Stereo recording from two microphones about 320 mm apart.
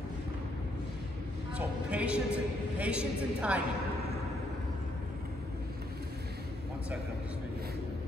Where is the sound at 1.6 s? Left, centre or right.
Centre.